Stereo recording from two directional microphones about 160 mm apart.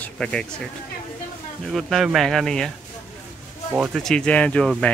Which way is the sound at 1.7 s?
Centre (ahead or behind).